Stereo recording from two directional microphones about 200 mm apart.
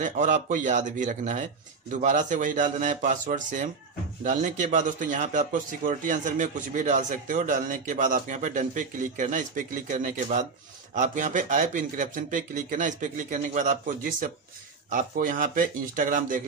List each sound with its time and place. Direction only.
0.0 s a man's voice: 40° right (ahead or behind)